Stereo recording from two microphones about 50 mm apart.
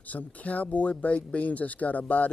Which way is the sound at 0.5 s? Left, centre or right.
Left.